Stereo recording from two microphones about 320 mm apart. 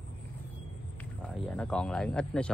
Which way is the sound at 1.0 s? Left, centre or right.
Centre.